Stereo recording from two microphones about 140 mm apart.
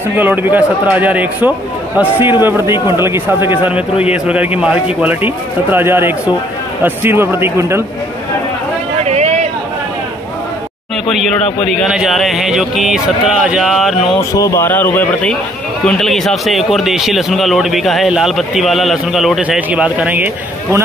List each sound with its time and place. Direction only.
0.1 s a man's voice: 10° right (ahead or behind)
9.0 s a sound: 50° right (ahead or behind)
11.7 s speech: centre (ahead or behind)
14.3 s a man's voice: 25° left (ahead or behind); by 20.2 s 10° right (ahead or behind)